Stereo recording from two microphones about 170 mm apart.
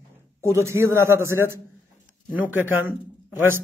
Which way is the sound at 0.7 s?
15° right (ahead or behind).